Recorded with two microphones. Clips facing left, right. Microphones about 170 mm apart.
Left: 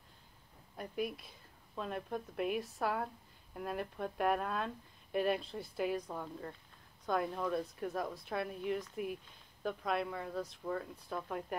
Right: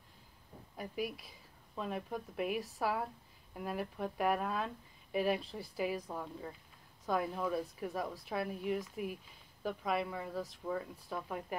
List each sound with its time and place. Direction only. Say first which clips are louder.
0.7 s a woman's voice: left 1 dB; centre (ahead or behind)